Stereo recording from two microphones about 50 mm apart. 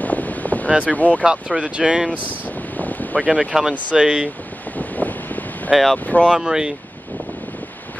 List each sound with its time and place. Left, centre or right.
0.0 s boat: left
0.7 s speech: right
0.9 s speech: left
1.2 s speech: centre
2.8 s boat: left
3.5 s speech: centre
4.7 s wind: left
5.7 s speech: centre
6.0 s speech: left
6.3 s speech: centre